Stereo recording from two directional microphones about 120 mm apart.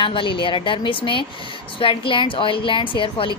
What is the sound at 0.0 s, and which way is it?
A woman's voice, 45° left (ahead or behind).